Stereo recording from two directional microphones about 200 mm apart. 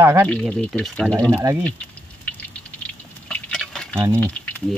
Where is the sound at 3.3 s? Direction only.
5° left (ahead or behind).